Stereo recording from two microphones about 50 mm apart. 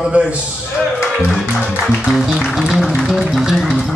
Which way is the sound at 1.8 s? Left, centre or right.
Centre.